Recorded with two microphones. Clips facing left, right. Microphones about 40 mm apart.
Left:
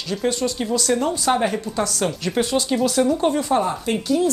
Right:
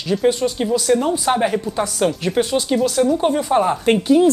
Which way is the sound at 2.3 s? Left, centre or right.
Centre.